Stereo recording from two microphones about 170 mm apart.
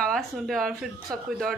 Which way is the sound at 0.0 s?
Centre (ahead or behind).